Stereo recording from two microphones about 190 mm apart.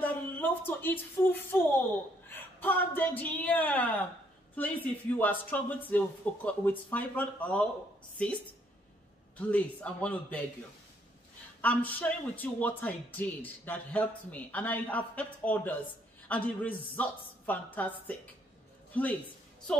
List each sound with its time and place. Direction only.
0.0 s a woman's voice: 10° left (ahead or behind)
9.5 s a man's voice: 10° left (ahead or behind)
11.6 s a man's voice: 10° left (ahead or behind)